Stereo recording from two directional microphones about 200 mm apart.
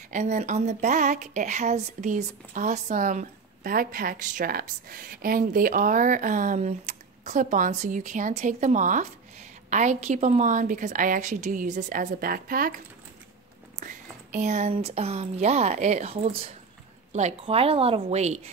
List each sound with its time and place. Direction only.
0.1 s speech: 35° right (ahead or behind)